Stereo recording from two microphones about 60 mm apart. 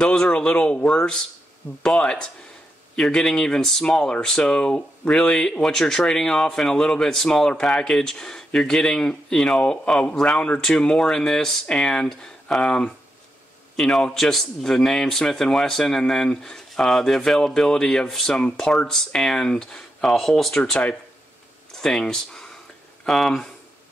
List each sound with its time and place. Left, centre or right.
0.0 s a man's voice: centre